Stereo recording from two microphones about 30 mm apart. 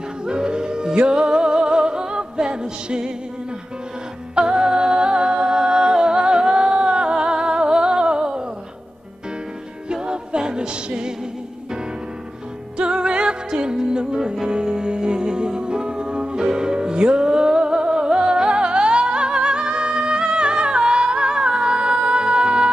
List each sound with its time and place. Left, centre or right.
0.2 s yodeling: right
0.9 s music: right
4.4 s music: right
10.0 s music: right
12.7 s music: right